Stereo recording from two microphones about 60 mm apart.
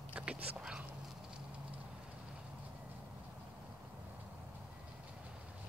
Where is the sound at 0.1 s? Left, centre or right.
Right.